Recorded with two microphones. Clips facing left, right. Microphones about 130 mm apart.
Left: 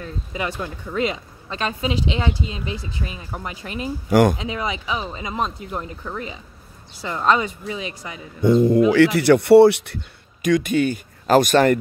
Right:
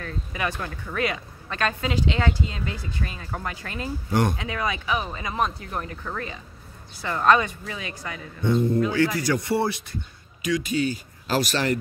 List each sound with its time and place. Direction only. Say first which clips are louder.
0.0 s a woman's voice: left 2 dB; 20° left (ahead or behind)
4.1 s speech: left 8 dB; 90° left
4.4 s a woman's voice: left 2 dB; 20° left (ahead or behind)
7.0 s a woman's voice: even; 20° left (ahead or behind)
8.5 s speech: left 7 dB; 90° left; by 9.9 s 70° left (ahead or behind)
10.4 s speech: left 6 dB; 55° left (ahead or behind)